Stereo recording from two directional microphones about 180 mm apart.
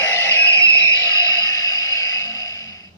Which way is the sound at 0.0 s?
15° left (ahead or behind).